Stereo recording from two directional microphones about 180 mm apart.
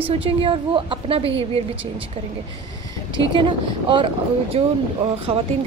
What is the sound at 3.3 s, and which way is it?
A woman's voice, 30° right (ahead or behind).